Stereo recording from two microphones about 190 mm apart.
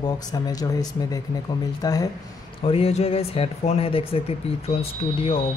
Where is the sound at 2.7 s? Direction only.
30° left (ahead or behind).